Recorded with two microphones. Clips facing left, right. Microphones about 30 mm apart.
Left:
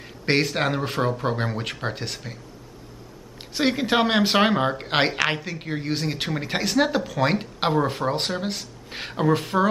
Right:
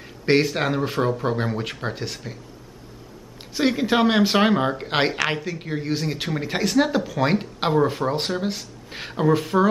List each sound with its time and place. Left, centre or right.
0.2 s speech: centre
3.5 s speech: centre